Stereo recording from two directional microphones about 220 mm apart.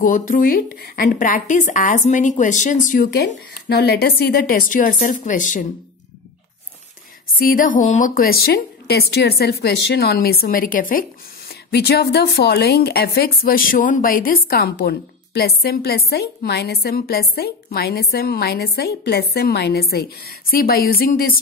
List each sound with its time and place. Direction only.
0.0 s speech: 35° left (ahead or behind)
7.3 s speech: 40° left (ahead or behind)